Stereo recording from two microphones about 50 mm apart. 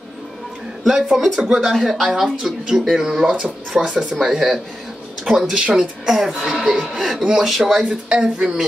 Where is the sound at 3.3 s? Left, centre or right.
Centre.